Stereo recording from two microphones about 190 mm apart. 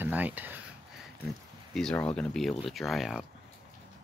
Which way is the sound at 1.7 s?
5° left (ahead or behind).